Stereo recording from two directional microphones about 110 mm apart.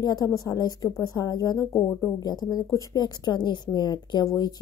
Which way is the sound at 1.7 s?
25° left (ahead or behind).